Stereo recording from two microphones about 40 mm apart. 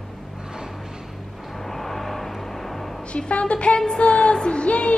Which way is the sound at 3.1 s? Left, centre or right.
Left.